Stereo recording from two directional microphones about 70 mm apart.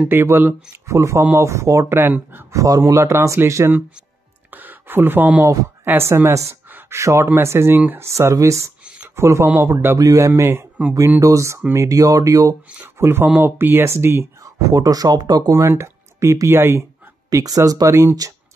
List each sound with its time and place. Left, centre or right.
0.0 s speech: right
1.9 s speech: right
2.5 s a man's voice: right
2.9 s speech: right
4.5 s a sound: right
5.9 s speech: right
9.9 s speech: right
10.5 s speech: right
11.1 s speech: right
13.0 s speech: right
14.4 s speech: right
15.7 s speech: right
17.3 s speech: right